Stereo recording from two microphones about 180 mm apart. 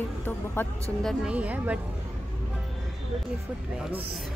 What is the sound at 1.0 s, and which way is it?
Speech, 5° right (ahead or behind).